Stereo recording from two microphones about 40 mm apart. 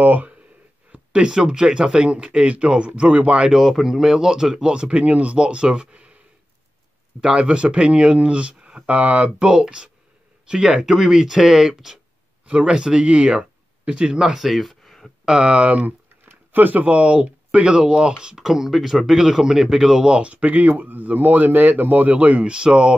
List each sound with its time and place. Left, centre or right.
0.0 s speech: right
1.1 s speech: right
3.5 s speech: centre; by 8.8 s right
8.8 s speech: right
9.4 s speech: right
12.4 s speech: right
14.4 s a sound: centre
15.2 s speech: right
16.5 s speech: right
16.8 s speech: right
18.4 s speech: centre
20.2 s speech: right